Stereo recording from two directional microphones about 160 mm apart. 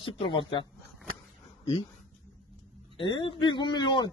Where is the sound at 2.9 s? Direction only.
30° left (ahead or behind).